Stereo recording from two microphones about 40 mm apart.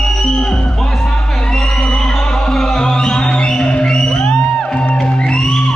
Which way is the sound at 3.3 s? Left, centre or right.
Left.